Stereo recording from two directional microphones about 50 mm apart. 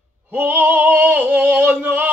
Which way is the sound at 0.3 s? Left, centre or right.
Right.